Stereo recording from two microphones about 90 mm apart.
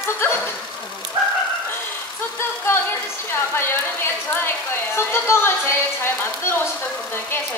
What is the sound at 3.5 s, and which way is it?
A woman's voice, 25° left (ahead or behind).